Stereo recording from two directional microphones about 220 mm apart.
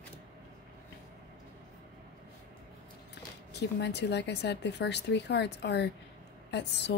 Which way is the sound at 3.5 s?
50° left (ahead or behind).